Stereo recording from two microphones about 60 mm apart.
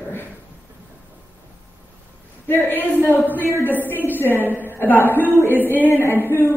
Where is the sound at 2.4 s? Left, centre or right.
Left.